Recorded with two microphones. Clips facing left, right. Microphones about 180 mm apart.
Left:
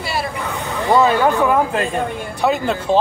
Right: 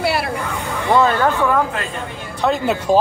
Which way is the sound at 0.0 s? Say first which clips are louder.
Right 4 dB; 65° right (ahead or behind).